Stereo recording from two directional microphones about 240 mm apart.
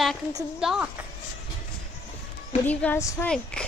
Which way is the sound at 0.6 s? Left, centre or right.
Centre.